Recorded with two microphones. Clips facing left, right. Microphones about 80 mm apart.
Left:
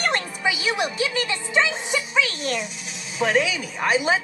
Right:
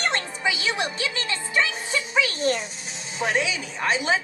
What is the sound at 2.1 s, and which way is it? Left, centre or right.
Speech, right.